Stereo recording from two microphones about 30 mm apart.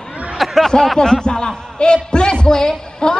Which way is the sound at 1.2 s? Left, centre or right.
Left.